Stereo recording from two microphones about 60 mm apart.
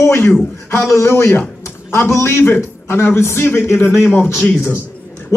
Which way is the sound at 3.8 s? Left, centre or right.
Left.